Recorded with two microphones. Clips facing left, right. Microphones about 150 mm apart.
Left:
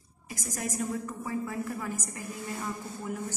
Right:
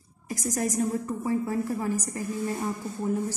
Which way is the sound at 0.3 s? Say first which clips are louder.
Right 7 dB; 40° right (ahead or behind).